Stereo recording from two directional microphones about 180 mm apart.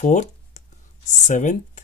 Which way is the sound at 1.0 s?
45° left (ahead or behind).